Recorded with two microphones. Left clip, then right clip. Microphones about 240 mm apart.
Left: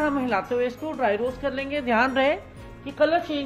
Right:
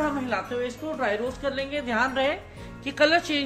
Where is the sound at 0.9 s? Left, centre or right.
Centre.